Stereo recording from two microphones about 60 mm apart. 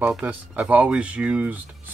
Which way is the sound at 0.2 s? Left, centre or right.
Right.